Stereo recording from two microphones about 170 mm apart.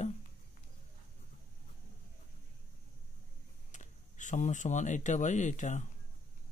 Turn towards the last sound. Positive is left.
turn(degrees=45)  # may be behind; listen again after turning